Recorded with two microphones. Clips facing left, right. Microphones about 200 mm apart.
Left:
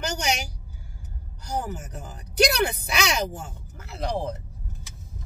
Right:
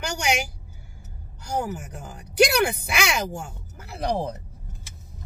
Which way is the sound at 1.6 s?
10° right (ahead or behind).